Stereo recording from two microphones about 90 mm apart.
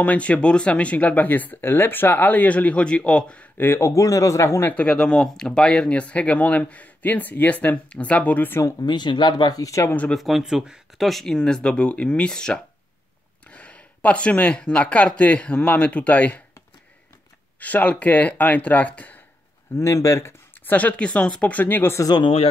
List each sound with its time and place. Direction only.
0.0 s speech: 15° left (ahead or behind)
8.6 s speech: 55° left (ahead or behind); by 9.9 s 35° left (ahead or behind)
10.1 s speech: centre (ahead or behind); by 16.4 s 15° left (ahead or behind)
17.6 s speech: 15° left (ahead or behind)
19.8 s speech: 30° left (ahead or behind)
21.9 s speech: 45° left (ahead or behind)
22.2 s speech: 90° left